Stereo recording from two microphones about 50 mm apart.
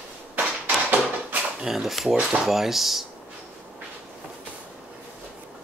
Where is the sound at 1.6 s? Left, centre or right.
Centre.